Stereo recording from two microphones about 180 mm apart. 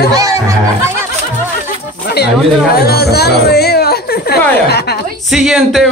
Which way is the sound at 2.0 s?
65° left (ahead or behind).